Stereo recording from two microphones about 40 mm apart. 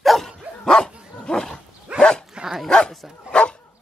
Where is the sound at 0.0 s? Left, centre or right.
Centre.